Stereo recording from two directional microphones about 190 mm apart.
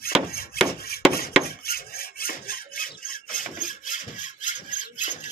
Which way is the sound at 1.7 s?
50° left (ahead or behind).